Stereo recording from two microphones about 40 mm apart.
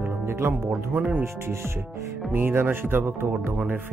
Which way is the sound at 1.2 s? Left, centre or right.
Right.